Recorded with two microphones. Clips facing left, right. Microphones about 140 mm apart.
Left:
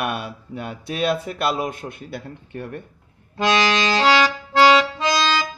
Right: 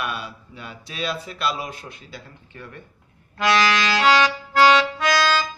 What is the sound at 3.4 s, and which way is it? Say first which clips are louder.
Accordion: left 1 dB; 25° left (ahead or behind).